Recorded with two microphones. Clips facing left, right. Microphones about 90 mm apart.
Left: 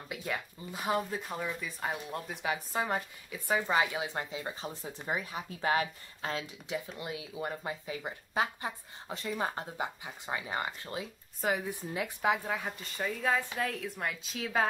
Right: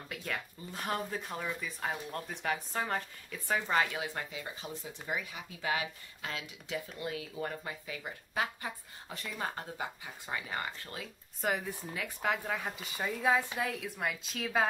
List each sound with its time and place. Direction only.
0.1 s speech: 10° left (ahead or behind); by 6.4 s 35° left (ahead or behind)
6.7 s speech: 20° left (ahead or behind)
11.4 s a woman's voice: centre (ahead or behind)